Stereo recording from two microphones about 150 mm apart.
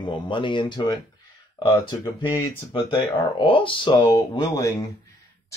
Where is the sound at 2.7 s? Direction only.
35° left (ahead or behind).